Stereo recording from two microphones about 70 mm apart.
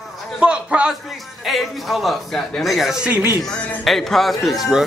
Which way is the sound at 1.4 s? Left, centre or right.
Centre.